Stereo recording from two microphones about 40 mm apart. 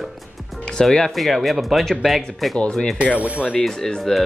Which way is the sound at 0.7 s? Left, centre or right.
Centre.